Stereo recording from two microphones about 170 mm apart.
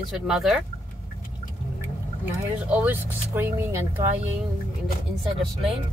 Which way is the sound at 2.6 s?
10° right (ahead or behind).